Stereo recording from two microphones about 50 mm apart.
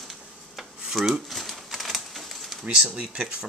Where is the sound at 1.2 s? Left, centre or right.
Centre.